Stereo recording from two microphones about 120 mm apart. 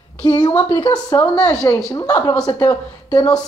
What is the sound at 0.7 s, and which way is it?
Speech, 50° left (ahead or behind).